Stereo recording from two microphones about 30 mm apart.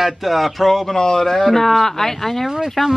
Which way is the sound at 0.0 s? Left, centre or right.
Centre.